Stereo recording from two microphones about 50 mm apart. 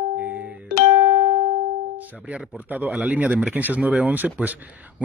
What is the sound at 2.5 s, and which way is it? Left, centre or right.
A man's voice, right.